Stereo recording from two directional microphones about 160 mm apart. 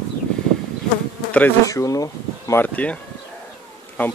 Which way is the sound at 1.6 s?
20° left (ahead or behind).